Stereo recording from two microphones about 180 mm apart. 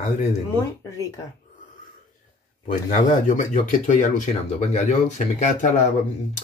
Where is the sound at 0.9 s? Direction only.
15° left (ahead or behind).